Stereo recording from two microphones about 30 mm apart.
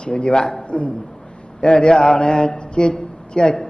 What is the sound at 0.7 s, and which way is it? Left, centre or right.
Speech, left.